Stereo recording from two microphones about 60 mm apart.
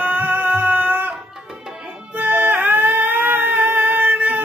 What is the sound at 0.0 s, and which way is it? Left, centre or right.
Music, right.